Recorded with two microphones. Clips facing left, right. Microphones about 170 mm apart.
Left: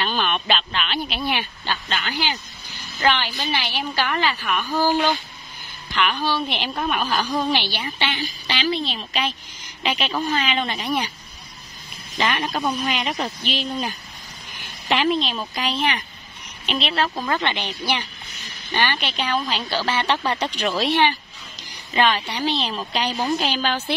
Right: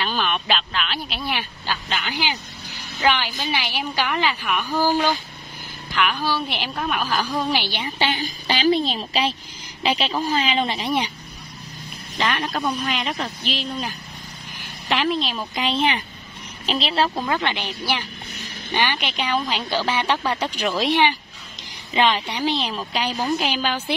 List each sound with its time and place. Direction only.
0.0 s a woman's voice: centre (ahead or behind)
5.9 s speech: 5° right (ahead or behind)
7.6 s a woman's voice: 20° right (ahead or behind)
8.0 s a child's voice: 40° right (ahead or behind)
12.2 s speech: 5° left (ahead or behind)
15.5 s a child's voice: 25° right (ahead or behind)
17.1 s a woman's voice: 10° right (ahead or behind)